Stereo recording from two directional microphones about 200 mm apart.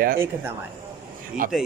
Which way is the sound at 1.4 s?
45° right (ahead or behind).